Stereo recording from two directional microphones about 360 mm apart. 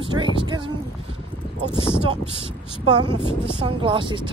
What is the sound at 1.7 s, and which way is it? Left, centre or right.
Speech, centre.